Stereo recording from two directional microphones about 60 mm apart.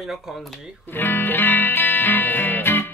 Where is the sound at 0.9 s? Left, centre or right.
Left.